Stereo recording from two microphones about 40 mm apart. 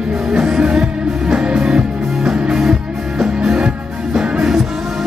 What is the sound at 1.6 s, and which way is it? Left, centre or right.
Music, centre.